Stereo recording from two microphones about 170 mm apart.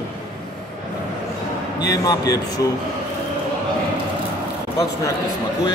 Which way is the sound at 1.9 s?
20° left (ahead or behind).